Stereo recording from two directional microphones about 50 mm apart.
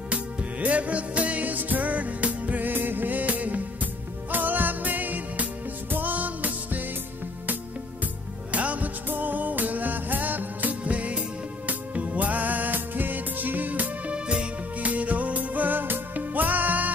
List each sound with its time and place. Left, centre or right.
0.1 s music: right
8.5 s music: right
14.1 s music: right